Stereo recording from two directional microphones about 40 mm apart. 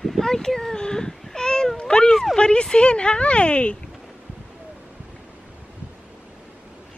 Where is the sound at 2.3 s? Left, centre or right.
Left.